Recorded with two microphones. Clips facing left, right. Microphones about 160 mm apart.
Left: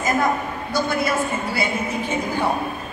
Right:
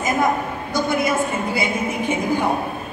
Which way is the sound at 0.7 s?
20° right (ahead or behind).